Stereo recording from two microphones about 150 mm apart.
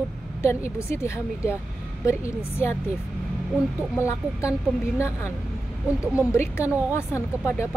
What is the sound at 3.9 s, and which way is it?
Speech, 20° left (ahead or behind).